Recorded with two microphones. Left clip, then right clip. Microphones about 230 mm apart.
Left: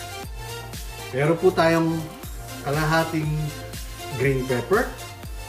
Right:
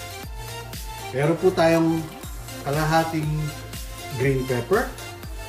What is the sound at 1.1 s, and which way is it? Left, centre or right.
Speech, centre.